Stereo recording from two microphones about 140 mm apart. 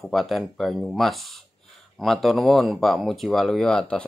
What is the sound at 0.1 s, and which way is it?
Speech, centre (ahead or behind).